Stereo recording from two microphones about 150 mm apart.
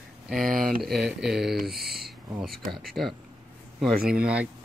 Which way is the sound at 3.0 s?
35° right (ahead or behind).